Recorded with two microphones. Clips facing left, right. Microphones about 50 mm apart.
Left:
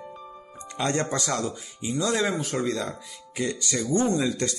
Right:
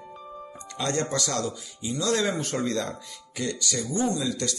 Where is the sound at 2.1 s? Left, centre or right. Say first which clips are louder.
Right 1 dB; centre.